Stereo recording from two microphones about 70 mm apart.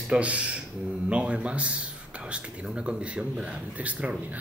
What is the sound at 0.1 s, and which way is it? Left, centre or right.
Speech, centre.